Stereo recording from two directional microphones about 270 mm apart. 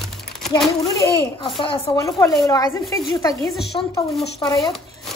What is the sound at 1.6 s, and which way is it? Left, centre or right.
A woman's voice, centre.